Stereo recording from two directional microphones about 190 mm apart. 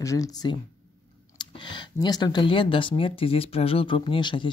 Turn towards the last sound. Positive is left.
turn(degrees=25)  # may be behind; listen again after turning